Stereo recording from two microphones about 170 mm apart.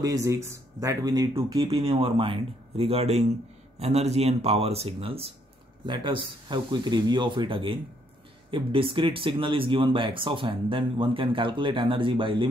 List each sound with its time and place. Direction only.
0.0 s speech: 20° right (ahead or behind)